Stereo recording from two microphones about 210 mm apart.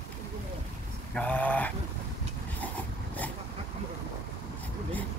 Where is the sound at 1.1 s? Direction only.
10° left (ahead or behind).